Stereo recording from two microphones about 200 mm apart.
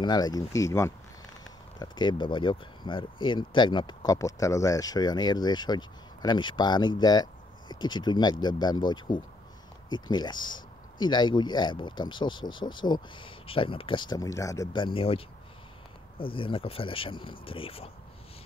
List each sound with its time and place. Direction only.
0.0 s speech: 20° left (ahead or behind)